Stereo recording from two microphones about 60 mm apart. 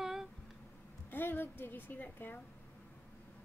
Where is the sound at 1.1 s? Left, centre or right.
Left.